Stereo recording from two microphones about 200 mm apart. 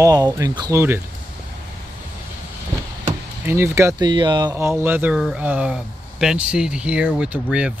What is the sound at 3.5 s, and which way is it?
Speech, 15° right (ahead or behind).